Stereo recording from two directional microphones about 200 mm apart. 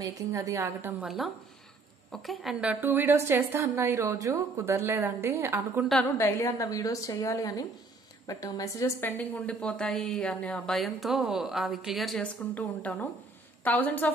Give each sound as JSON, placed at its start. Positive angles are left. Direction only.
{"t": 0.0, "sound": "a woman's voice", "side_deg": -15}
{"t": 5.9, "sound": "a woman's voice", "side_deg": 10}